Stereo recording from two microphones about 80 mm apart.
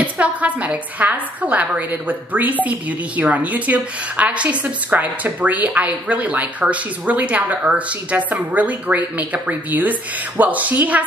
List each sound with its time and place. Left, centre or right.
0.0 s a woman's voice: centre